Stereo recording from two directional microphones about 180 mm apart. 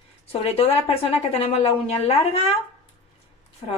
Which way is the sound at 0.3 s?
35° left (ahead or behind).